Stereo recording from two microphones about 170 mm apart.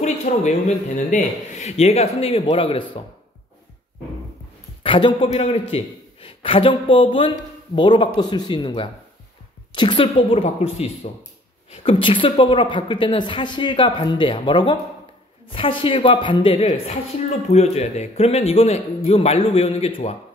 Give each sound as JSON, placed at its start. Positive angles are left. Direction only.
{"t": 0.0, "sound": "a man's voice", "side_deg": 40}
{"t": 4.8, "sound": "a man's voice", "side_deg": 30}